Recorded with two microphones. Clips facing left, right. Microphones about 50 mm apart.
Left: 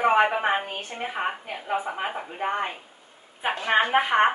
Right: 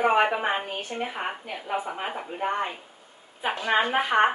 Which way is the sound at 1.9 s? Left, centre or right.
Centre.